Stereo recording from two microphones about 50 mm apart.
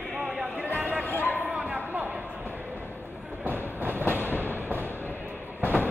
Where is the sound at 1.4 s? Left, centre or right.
Right.